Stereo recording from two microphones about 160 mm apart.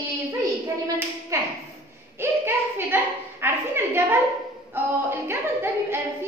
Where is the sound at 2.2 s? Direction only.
15° right (ahead or behind).